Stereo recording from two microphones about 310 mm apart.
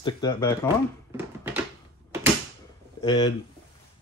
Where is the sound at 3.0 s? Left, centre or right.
Centre.